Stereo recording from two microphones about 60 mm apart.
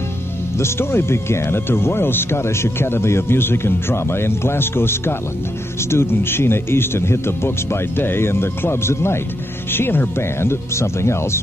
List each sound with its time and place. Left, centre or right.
0.6 s speech: left